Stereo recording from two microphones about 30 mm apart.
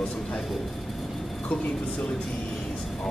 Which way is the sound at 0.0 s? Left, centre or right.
Left.